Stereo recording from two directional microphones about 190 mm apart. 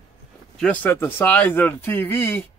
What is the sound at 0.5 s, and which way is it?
Speech, 5° left (ahead or behind).